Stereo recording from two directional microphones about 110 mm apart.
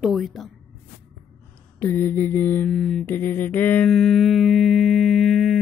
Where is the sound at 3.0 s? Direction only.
20° left (ahead or behind).